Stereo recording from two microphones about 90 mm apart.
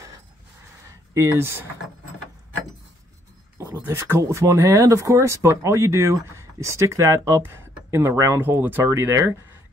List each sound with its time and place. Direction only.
1.1 s speech: 30° right (ahead or behind)
3.5 s speech: 30° right (ahead or behind)